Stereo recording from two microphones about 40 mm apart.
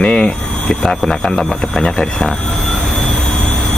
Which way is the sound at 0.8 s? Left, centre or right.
Centre.